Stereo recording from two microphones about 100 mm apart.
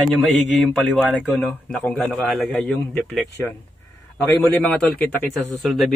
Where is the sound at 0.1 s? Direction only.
Centre (ahead or behind).